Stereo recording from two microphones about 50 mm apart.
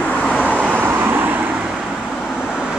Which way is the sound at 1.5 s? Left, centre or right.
Centre.